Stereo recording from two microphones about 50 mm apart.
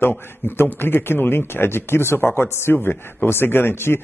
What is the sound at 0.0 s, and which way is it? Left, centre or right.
Speech, left.